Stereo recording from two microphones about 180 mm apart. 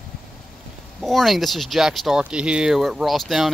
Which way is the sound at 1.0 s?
Centre (ahead or behind).